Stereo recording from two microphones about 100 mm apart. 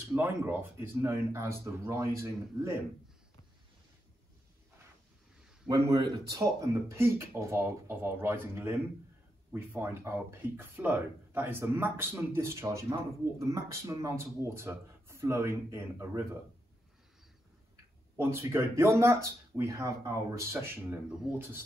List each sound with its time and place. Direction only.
0.2 s speech: 20° right (ahead or behind)
5.7 s speech: 35° right (ahead or behind)
18.1 s speech: 25° right (ahead or behind)